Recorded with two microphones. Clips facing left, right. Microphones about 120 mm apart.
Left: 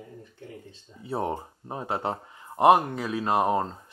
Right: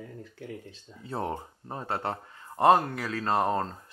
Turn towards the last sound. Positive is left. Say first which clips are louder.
# left 2 dB
turn(degrees=15)  # may be behind; listen again after turning